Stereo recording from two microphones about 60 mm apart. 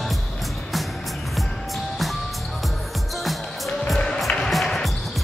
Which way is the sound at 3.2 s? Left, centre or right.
Centre.